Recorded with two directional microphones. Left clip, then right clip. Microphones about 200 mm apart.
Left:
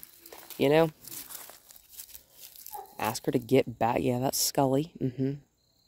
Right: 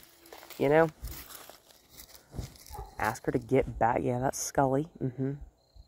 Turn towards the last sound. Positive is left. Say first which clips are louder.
# left 3 dB
turn(degrees=45)  # may be behind; listen again after turning